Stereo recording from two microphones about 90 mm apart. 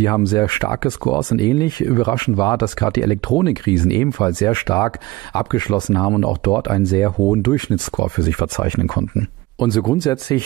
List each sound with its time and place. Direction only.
0.4 s speech: 45° left (ahead or behind)
4.6 s speech: 40° left (ahead or behind)